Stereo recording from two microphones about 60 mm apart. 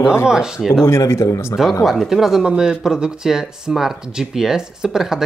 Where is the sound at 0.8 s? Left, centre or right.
Left.